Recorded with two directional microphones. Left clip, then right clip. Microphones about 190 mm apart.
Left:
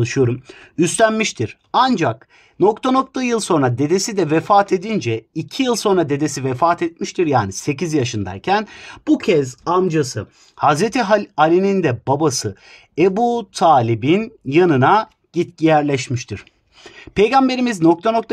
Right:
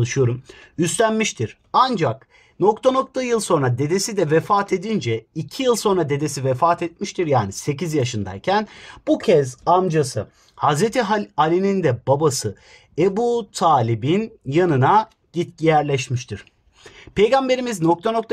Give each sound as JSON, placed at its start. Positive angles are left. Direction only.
{"t": 0.0, "sound": "speech", "side_deg": 35}